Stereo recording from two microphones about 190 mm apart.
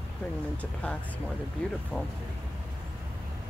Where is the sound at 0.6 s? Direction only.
5° left (ahead or behind).